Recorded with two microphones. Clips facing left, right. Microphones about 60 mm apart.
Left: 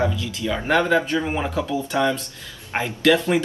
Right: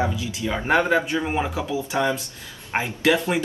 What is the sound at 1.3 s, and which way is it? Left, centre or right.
Speech, centre.